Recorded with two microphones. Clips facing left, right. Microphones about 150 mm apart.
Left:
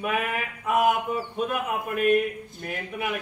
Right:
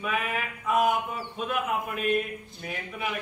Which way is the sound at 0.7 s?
50° left (ahead or behind).